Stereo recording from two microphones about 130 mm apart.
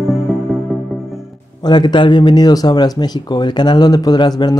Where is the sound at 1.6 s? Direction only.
35° left (ahead or behind).